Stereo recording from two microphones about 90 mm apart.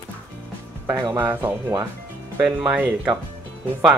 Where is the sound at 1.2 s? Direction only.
20° right (ahead or behind).